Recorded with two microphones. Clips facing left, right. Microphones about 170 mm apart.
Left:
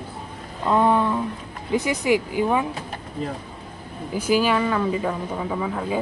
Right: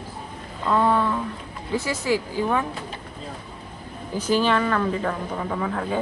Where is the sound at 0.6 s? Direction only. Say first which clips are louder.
Left 2 dB; 15° left (ahead or behind).